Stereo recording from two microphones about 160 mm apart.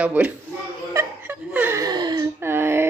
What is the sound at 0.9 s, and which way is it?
Chuckle, 15° right (ahead or behind).